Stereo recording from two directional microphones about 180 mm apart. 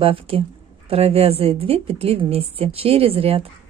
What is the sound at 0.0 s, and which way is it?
A woman's voice, 30° right (ahead or behind).